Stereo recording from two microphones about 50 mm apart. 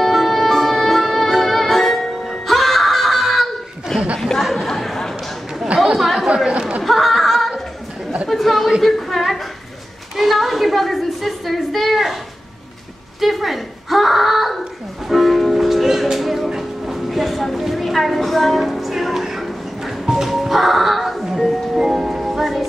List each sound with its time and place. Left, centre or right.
0.0 s music: centre
4.2 s chatter: centre
6.3 s chatter: centre
6.8 s chuckle: centre
8.3 s chatter: centre
8.8 s a sound: centre
13.2 s a sound: centre